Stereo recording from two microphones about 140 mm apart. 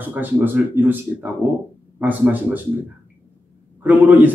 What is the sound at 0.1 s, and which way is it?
A man's voice, 15° right (ahead or behind).